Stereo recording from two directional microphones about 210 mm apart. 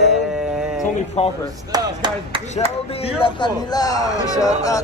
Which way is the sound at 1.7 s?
20° right (ahead or behind).